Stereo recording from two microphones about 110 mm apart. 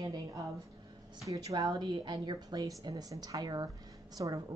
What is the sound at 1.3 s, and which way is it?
Speech, 35° right (ahead or behind).